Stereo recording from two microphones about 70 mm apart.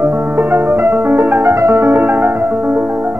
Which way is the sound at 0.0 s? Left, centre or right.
Right.